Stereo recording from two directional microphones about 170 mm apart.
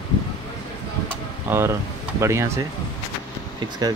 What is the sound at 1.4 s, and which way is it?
Speech, 15° right (ahead or behind).